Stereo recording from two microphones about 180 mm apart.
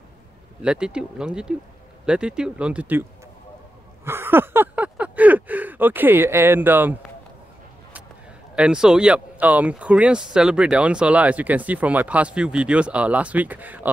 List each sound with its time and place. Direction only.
0.6 s speech: 5° right (ahead or behind)
4.0 s a sound: 15° right (ahead or behind)
8.5 s speech: 5° right (ahead or behind)